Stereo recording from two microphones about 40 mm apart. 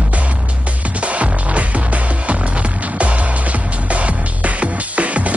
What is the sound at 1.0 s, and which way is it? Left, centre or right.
Music, right.